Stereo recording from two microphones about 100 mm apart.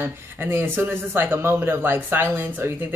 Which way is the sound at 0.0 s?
25° right (ahead or behind).